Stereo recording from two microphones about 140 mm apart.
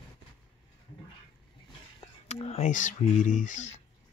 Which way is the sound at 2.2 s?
45° left (ahead or behind).